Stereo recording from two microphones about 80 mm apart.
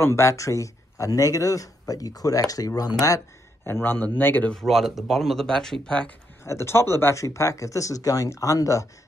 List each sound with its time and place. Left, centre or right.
0.0 s speech: left
3.6 s a man's voice: left
4.5 s speech: centre
6.4 s speech: left